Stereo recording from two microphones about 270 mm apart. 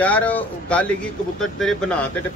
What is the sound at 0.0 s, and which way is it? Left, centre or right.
A man's voice, centre.